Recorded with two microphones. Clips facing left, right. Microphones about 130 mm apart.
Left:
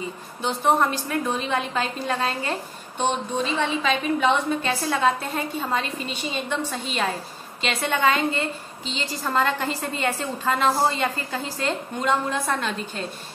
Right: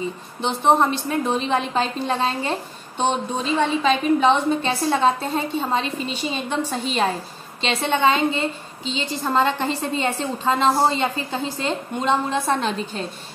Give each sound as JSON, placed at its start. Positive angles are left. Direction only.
{"t": 0.4, "sound": "a woman's voice", "side_deg": -25}
{"t": 3.5, "sound": "a woman's voice", "side_deg": -35}
{"t": 7.6, "sound": "a woman's voice", "side_deg": -25}